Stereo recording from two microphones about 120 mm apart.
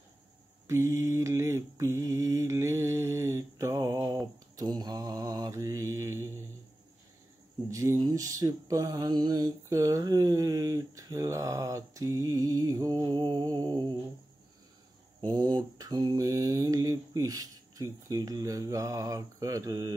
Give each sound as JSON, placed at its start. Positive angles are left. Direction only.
{"t": 0.7, "sound": "mantra", "side_deg": -25}
{"t": 7.7, "sound": "a sound", "side_deg": -25}
{"t": 8.0, "sound": "mantra", "side_deg": -30}
{"t": 15.1, "sound": "mantra", "side_deg": -35}